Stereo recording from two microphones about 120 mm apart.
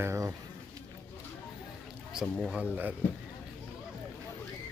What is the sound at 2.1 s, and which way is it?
Speech, 5° right (ahead or behind).